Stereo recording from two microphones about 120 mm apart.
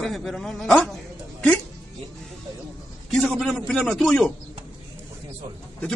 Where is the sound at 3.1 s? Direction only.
5° left (ahead or behind).